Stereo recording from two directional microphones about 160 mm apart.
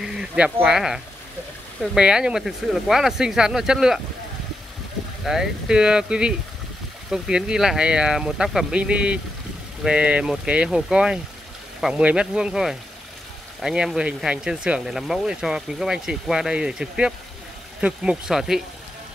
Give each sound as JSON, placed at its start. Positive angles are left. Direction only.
{"t": 0.0, "sound": "speech", "side_deg": -5}
{"t": 5.2, "sound": "speech", "side_deg": -5}